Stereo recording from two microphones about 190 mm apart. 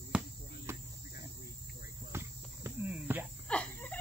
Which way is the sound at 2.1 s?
15° right (ahead or behind).